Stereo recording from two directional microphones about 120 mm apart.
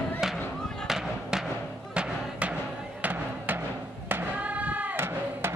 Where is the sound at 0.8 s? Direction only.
5° right (ahead or behind).